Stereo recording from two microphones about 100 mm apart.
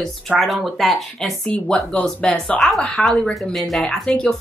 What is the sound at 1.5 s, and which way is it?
Speech, 10° left (ahead or behind).